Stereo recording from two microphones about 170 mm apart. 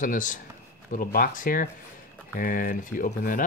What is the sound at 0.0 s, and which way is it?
Speech, 50° left (ahead or behind).